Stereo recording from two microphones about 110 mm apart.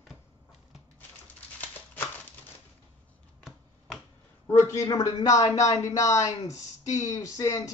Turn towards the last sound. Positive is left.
turn(degrees=30)  # may be behind; listen again after turning